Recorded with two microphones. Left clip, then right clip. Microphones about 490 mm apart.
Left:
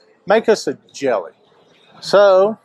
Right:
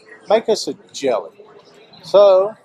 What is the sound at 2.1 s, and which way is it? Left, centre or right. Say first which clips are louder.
Speech: even; left.